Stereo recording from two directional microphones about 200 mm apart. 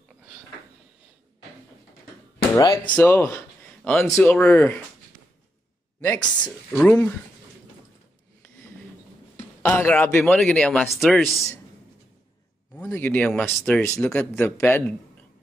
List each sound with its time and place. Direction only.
2.5 s speech: 20° left (ahead or behind)
3.0 s a man's voice: 10° left (ahead or behind)
5.9 s speech: 15° left (ahead or behind)
6.7 s speech: 5° left (ahead or behind)
9.6 s speech: 10° left (ahead or behind)
12.7 s speech: 10° left (ahead or behind)